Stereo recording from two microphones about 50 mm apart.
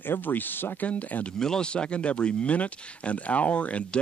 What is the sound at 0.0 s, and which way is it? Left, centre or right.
Speech, left.